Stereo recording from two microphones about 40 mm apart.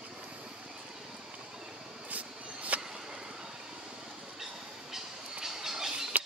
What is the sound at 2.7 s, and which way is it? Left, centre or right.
Vehicle, right.